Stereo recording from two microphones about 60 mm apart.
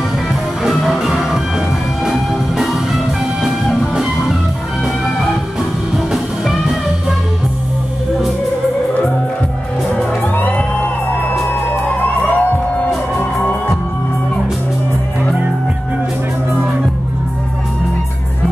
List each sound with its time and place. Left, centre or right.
0.9 s music: centre
5.9 s music: centre
10.3 s music: left